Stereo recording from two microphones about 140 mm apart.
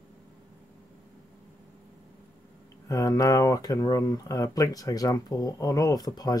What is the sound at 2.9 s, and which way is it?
Speech, 25° left (ahead or behind).